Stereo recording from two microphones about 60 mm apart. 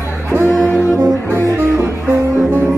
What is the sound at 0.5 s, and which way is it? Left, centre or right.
Music, left.